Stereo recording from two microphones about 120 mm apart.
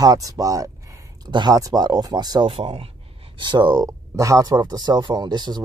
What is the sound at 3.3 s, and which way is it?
Speech, 40° right (ahead or behind).